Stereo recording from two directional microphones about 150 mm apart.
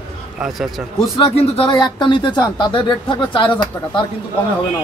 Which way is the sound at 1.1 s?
40° left (ahead or behind).